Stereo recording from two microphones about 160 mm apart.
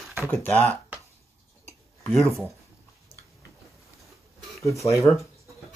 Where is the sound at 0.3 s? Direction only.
10° left (ahead or behind).